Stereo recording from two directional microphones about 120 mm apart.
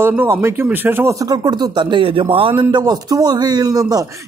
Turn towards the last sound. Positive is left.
turn(degrees=-30)  # may be behind; listen again after turning